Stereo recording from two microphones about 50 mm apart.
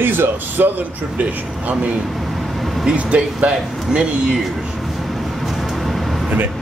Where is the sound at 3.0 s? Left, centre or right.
Right.